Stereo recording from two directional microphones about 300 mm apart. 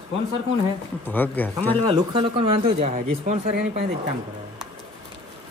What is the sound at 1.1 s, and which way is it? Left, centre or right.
Speech, centre.